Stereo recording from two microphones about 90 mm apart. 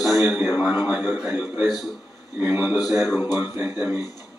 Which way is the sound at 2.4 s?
25° right (ahead or behind).